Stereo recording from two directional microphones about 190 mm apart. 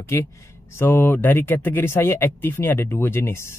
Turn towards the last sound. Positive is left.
turn(degrees=15)  # may be behind; listen again after turning